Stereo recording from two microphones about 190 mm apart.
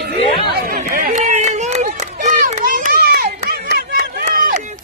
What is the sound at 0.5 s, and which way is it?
Run, 45° right (ahead or behind).